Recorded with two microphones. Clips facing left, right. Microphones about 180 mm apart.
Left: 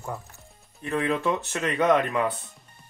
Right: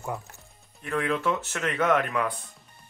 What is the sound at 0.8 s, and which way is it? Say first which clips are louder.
Speech: left 1 dB; 20° left (ahead or behind).